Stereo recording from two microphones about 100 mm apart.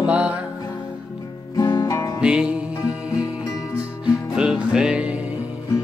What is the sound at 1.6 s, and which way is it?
Music, 35° left (ahead or behind).